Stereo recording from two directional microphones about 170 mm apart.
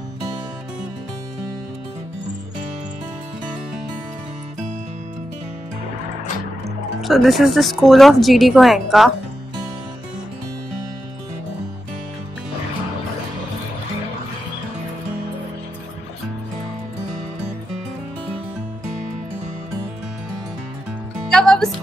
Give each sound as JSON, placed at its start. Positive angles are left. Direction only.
{"t": 7.0, "sound": "speech", "side_deg": 0}
{"t": 21.3, "sound": "music", "side_deg": 5}